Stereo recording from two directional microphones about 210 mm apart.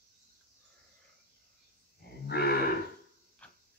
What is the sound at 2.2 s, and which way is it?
Cattle, 50° left (ahead or behind).